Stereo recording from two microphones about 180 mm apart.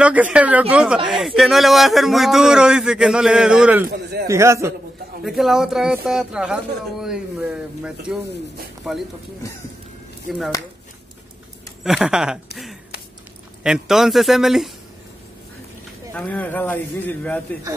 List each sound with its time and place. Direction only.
0.0 s speech: 5° right (ahead or behind)
3.9 s a man's voice: 65° right (ahead or behind)
4.3 s a man's voice: 15° right (ahead or behind)
5.2 s speech: centre (ahead or behind)
11.8 s speech: 5° right (ahead or behind)
13.6 s speech: 5° right (ahead or behind)
16.1 s speech: 10° left (ahead or behind)